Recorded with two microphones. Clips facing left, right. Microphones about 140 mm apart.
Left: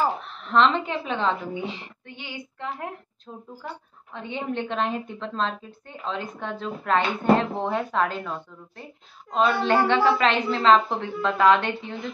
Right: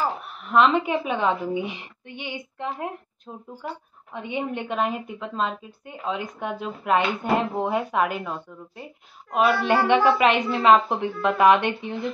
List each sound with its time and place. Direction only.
0.2 s a woman's voice: 10° right (ahead or behind)